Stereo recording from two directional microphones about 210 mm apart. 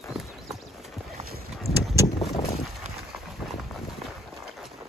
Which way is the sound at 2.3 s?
30° left (ahead or behind).